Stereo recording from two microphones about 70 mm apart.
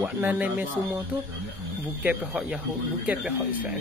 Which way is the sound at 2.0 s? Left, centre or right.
Centre.